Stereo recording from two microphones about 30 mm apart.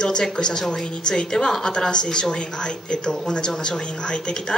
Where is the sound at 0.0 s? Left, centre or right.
Left.